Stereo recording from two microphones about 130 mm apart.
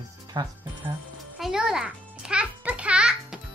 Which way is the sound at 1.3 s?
5° right (ahead or behind).